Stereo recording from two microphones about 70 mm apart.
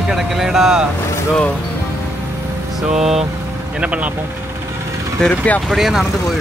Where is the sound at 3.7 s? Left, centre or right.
Centre.